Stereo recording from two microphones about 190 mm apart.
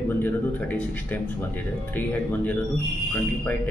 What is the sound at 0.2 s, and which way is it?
Speech, 10° left (ahead or behind).